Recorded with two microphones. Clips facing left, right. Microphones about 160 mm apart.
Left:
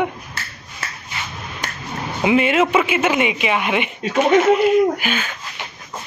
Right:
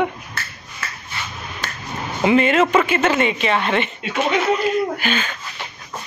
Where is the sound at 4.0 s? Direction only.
45° left (ahead or behind).